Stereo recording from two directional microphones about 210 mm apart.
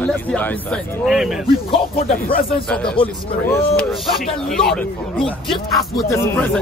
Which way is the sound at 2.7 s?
5° left (ahead or behind).